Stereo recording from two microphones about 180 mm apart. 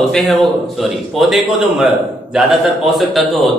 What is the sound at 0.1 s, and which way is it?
A man's voice, centre (ahead or behind).